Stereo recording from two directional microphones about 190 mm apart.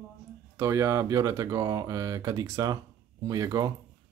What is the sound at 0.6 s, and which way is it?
Speech, 15° right (ahead or behind).